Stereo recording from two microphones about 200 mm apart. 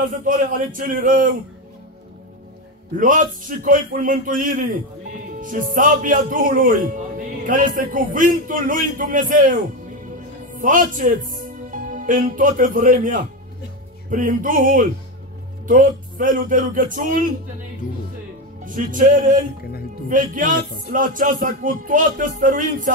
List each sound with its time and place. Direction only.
0.2 s speech: 40° right (ahead or behind)
3.0 s a man's voice: 40° right (ahead or behind)
18.6 s music: 40° right (ahead or behind)
20.1 s a man's voice: 40° right (ahead or behind)